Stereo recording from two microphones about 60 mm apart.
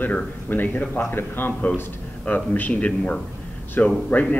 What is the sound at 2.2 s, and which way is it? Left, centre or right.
A man's voice, left.